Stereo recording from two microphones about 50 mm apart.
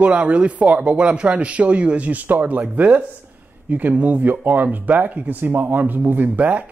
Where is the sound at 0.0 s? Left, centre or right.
Right.